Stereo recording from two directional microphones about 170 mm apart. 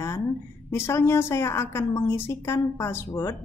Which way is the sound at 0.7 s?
15° left (ahead or behind).